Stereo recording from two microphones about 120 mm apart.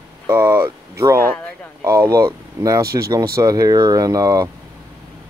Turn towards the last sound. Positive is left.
turn(degrees=-30)  # may be behind; listen again after turning